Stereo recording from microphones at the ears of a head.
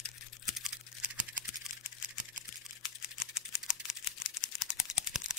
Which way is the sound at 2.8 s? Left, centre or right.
Left.